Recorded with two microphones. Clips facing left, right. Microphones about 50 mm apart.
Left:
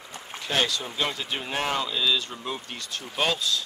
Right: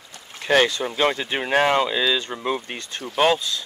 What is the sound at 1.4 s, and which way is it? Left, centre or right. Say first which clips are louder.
Speech: right 10 dB; right.